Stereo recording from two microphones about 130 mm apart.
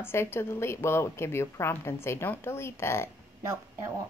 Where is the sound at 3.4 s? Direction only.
20° right (ahead or behind).